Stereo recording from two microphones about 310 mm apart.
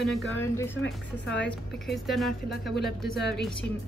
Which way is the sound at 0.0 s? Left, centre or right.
Centre.